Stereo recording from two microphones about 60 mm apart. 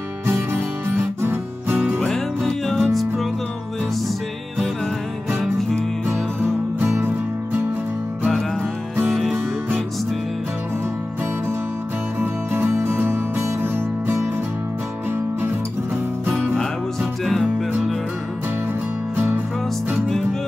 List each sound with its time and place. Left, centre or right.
0.3 s music: right
2.0 s music: centre
5.4 s music: centre
6.8 s music: right
12.2 s music: right
17.2 s music: centre
19.1 s music: right